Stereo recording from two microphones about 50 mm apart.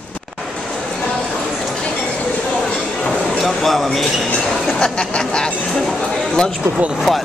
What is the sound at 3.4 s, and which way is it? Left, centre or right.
Speech, centre.